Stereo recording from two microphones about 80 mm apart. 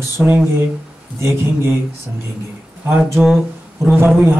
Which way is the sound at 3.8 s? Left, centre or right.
Right.